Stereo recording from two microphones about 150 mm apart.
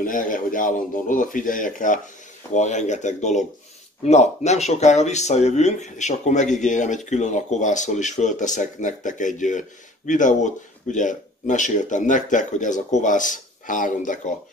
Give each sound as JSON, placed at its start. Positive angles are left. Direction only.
{"t": 0.0, "sound": "speech", "side_deg": 65}